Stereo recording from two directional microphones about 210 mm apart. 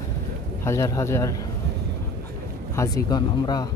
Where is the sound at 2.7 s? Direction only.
15° left (ahead or behind).